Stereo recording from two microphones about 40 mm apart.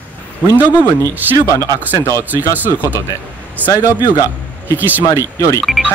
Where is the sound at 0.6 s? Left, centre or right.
Right.